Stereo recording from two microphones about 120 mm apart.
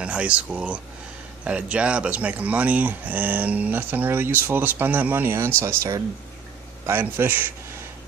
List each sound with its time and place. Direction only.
0.0 s speech: 10° right (ahead or behind)